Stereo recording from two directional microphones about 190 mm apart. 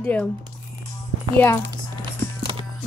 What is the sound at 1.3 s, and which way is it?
Speech, 10° left (ahead or behind).